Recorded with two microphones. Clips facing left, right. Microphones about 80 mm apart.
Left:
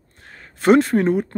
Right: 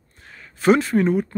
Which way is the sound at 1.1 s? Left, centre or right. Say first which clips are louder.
Left 1 dB; left.